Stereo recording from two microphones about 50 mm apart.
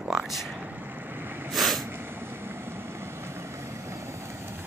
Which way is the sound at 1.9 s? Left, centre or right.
Right.